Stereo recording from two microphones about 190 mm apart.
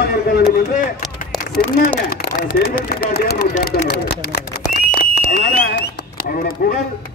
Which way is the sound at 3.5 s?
55° left (ahead or behind).